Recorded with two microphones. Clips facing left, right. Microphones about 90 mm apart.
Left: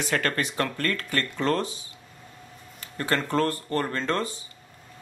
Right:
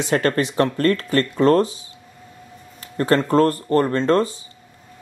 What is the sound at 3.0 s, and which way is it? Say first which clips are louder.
Speech: right 9 dB; 35° right (ahead or behind).